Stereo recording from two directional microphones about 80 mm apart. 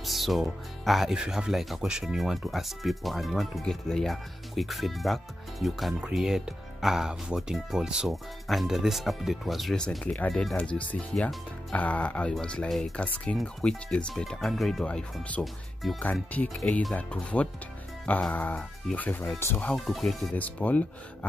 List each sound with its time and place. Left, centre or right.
0.0 s speech: centre
9.8 s speech: centre
12.9 s speech: centre
13.4 s speech: centre
14.9 s speech: centre
15.4 s speech: centre
16.0 s speech: centre
19.9 s speech: centre
20.3 s speech: centre